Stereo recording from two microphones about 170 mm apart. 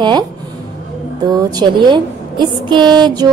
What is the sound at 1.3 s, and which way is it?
Speech, 25° right (ahead or behind).